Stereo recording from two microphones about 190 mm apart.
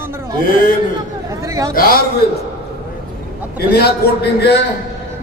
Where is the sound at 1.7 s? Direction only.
50° left (ahead or behind).